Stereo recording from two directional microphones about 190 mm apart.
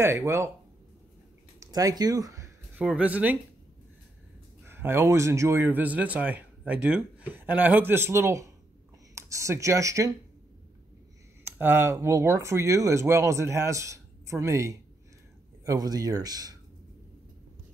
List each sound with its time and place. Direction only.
0.0 s speech: 15° right (ahead or behind)
1.6 s speech: 20° right (ahead or behind)
4.6 s speech: 10° right (ahead or behind)
11.4 s speech: 10° right (ahead or behind)